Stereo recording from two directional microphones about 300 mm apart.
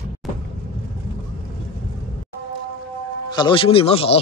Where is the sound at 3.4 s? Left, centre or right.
Centre.